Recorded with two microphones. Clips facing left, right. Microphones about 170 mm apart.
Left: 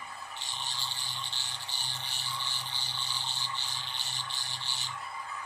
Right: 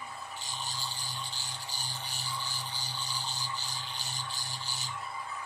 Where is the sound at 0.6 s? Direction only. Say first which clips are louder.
Right 1 dB; 40° right (ahead or behind).